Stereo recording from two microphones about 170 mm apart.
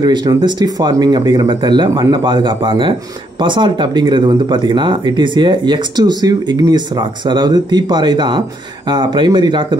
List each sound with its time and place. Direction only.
0.0 s speech: 25° right (ahead or behind)